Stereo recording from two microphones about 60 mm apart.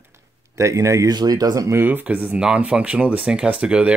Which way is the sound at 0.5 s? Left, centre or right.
Right.